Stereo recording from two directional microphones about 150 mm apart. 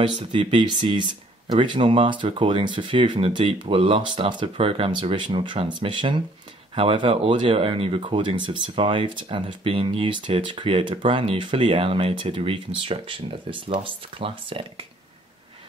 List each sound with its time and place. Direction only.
0.0 s speech: 35° right (ahead or behind)